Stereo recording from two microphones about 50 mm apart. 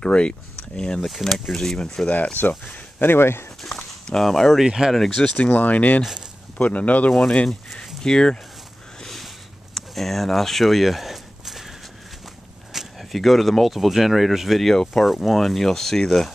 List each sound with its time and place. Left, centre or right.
0.0 s speech: centre
1.0 s speech: centre
2.3 s speech: left
3.6 s speech: centre
4.6 s speech: centre
4.9 s speech: centre
5.5 s speech: left
7.1 s speech: centre
9.0 s a sound: centre
12.7 s speech: centre
15.0 s speech: centre